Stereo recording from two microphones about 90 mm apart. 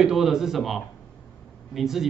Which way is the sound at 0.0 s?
5° right (ahead or behind).